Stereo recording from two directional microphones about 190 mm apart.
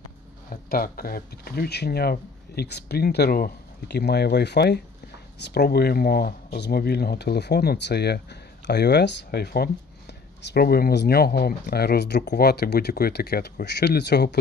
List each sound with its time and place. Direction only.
0.5 s speech: 50° left (ahead or behind)